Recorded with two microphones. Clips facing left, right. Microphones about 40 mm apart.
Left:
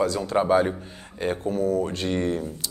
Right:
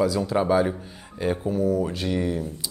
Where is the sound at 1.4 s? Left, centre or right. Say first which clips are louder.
Even; centre.